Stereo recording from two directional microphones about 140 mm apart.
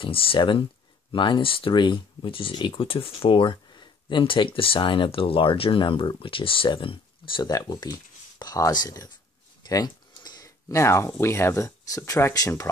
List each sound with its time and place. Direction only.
0.0 s speech: 40° left (ahead or behind); by 12.6 s 20° left (ahead or behind)